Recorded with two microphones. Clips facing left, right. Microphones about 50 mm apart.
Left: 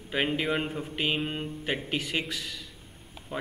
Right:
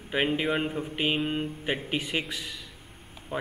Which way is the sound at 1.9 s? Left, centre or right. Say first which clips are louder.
Right 1 dB; centre.